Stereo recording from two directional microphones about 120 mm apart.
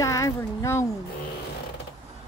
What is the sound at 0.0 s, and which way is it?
Speech, 25° left (ahead or behind).